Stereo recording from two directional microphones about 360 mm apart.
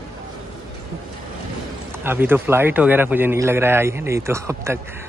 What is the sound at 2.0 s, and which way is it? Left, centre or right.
A man's voice, centre.